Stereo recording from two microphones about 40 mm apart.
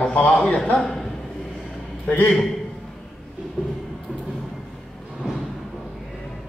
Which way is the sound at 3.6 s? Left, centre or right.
Left.